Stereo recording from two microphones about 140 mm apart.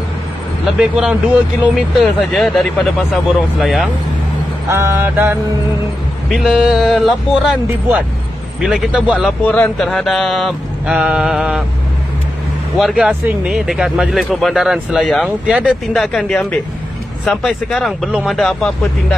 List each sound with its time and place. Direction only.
0.7 s speech: 5° right (ahead or behind)
4.6 s mantra: 20° right (ahead or behind)
6.2 s speech: centre (ahead or behind)
8.5 s speech: centre (ahead or behind)
9.5 s speech: 5° left (ahead or behind)
12.7 s speech: 5° right (ahead or behind)